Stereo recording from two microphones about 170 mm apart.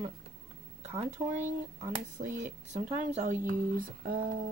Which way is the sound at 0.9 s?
40° right (ahead or behind).